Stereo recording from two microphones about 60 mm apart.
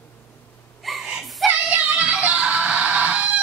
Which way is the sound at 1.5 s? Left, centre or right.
Right.